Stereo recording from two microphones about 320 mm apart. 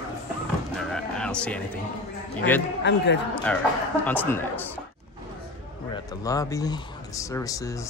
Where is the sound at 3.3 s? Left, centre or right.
Centre.